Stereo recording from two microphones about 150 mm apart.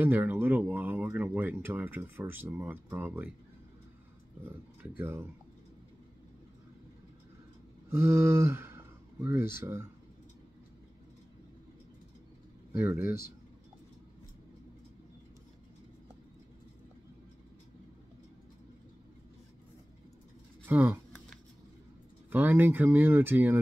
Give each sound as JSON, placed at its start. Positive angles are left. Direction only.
{"t": 0.0, "sound": "speech", "side_deg": -10}
{"t": 4.5, "sound": "speech", "side_deg": -15}
{"t": 7.9, "sound": "speech", "side_deg": -15}
{"t": 12.7, "sound": "speech", "side_deg": -15}
{"t": 20.6, "sound": "speech", "side_deg": -10}
{"t": 22.3, "sound": "speech", "side_deg": -10}